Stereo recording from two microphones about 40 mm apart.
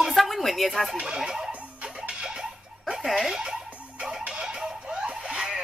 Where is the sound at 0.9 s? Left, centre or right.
Centre.